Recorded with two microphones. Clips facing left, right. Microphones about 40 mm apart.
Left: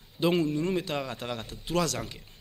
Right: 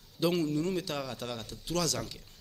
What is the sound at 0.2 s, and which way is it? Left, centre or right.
Speech, left.